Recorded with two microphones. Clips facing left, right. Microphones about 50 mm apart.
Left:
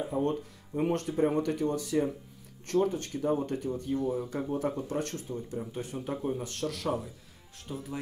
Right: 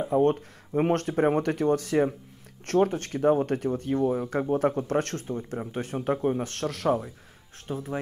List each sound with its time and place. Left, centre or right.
0.1 s speech: right